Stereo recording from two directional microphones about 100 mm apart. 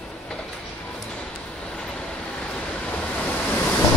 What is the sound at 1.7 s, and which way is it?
Vehicle, 10° left (ahead or behind).